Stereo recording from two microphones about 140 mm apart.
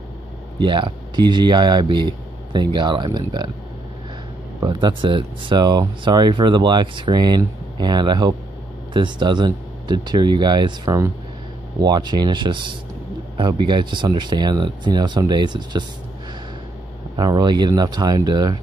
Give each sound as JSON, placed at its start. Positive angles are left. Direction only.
{"t": 0.6, "sound": "speech", "side_deg": -35}
{"t": 4.6, "sound": "speech", "side_deg": -35}
{"t": 17.2, "sound": "speech", "side_deg": -30}